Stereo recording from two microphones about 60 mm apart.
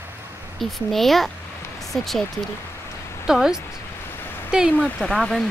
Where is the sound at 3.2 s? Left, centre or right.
Centre.